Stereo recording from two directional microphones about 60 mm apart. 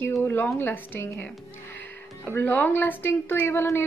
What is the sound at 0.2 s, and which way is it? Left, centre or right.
Speech, left.